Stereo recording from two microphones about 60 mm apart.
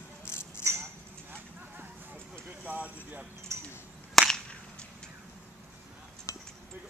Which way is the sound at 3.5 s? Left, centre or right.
Right.